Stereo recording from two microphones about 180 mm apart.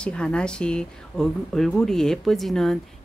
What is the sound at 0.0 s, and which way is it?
Speech, 5° left (ahead or behind).